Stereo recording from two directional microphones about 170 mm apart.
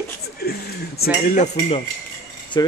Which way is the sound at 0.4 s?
65° left (ahead or behind).